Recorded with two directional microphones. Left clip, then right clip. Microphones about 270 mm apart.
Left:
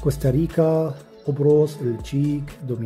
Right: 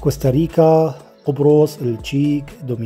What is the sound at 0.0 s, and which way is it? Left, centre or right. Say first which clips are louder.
Speech: right 5 dB; centre.